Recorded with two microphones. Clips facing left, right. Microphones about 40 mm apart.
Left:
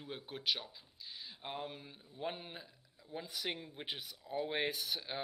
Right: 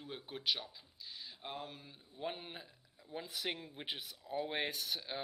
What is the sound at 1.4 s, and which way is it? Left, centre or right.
Speech, centre.